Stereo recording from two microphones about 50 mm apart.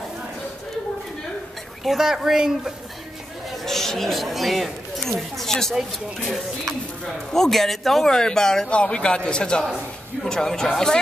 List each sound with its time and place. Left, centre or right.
1.9 s speech: centre
3.6 s speech: centre
8.6 s speech: left